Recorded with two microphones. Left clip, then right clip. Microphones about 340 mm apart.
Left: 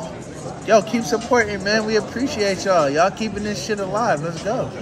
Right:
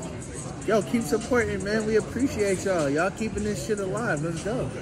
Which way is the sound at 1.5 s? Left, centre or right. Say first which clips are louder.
Left 5 dB; left.